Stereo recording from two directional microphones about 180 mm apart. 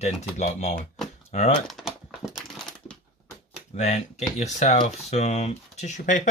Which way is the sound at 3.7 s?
40° left (ahead or behind).